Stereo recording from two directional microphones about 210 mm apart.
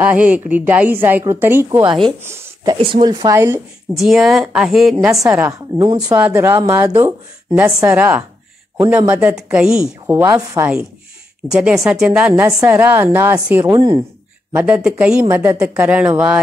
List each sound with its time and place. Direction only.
0.1 s speech: 5° right (ahead or behind)
4.0 s speech: centre (ahead or behind)
5.8 s speech: 20° right (ahead or behind)
11.5 s speech: centre (ahead or behind); by 14.0 s 20° right (ahead or behind)
14.5 s speech: 5° right (ahead or behind)